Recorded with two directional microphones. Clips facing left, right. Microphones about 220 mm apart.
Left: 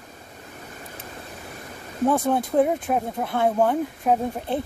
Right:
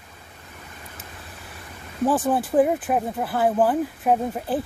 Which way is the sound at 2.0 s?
5° right (ahead or behind).